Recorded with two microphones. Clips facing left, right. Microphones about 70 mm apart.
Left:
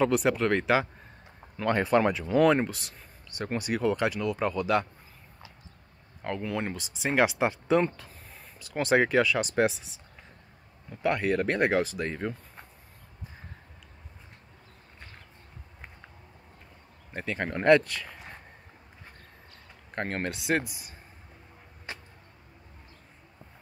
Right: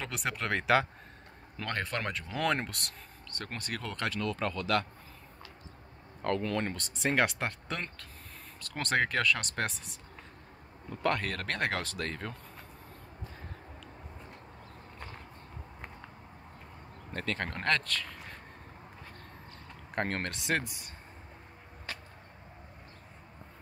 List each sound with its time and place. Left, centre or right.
0.0 s speech: centre
6.2 s speech: centre
11.0 s speech: centre
17.1 s speech: centre
20.0 s speech: centre
21.9 s vehicle: left